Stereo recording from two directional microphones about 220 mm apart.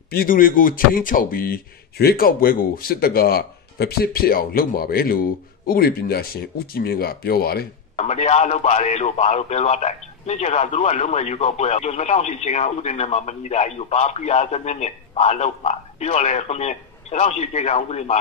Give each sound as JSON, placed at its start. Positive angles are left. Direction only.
{"t": 0.1, "sound": "speech", "side_deg": 40}
{"t": 7.9, "sound": "a man's voice", "side_deg": 30}